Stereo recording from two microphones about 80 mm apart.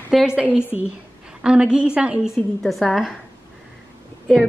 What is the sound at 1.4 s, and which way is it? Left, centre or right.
Speech, centre.